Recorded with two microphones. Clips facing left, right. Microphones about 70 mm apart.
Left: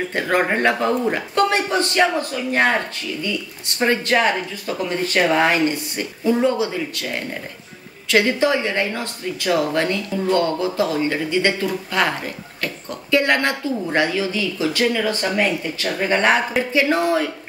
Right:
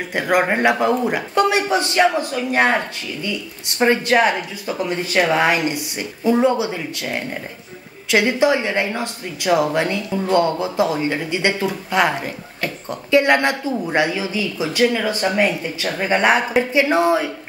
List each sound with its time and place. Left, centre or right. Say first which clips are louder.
0.1 s speech: right 3 dB; centre